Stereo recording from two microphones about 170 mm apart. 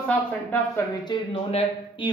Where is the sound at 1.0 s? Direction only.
30° left (ahead or behind).